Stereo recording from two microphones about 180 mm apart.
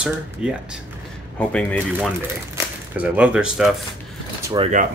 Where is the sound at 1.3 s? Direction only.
5° left (ahead or behind).